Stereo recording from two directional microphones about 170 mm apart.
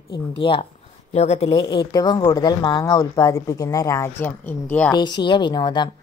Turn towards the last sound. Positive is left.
turn(degrees=25)  # may be behind; listen again after turning